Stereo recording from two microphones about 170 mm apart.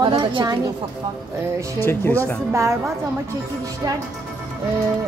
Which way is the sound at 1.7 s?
15° left (ahead or behind).